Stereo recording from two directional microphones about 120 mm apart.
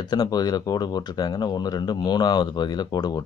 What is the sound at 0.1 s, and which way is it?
Speech, 35° left (ahead or behind).